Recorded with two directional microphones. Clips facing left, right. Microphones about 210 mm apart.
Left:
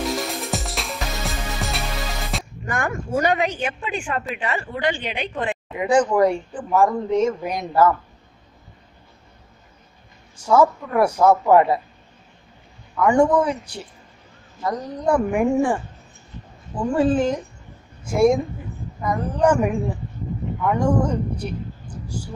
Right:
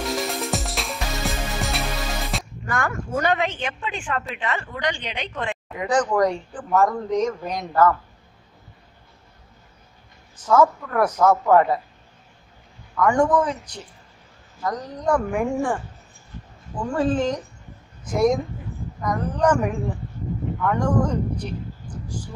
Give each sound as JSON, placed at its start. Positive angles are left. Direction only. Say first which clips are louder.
{"t": 0.0, "sound": "music", "louder": "even", "side_deg": 0}
{"t": 2.6, "sound": "a woman's voice", "louder": "left 1 dB", "side_deg": 15}
{"t": 10.3, "sound": "a woman's voice", "louder": "left 1 dB", "side_deg": 10}
{"t": 12.9, "sound": "a woman's voice", "louder": "left 2 dB", "side_deg": 10}